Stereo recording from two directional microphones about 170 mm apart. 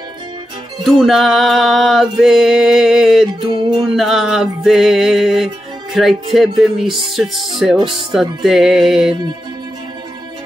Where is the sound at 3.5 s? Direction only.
30° right (ahead or behind).